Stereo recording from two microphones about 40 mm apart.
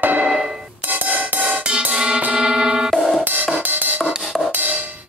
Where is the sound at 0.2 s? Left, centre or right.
Centre.